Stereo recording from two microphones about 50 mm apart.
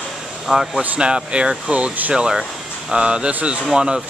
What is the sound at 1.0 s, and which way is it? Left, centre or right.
Speech, right.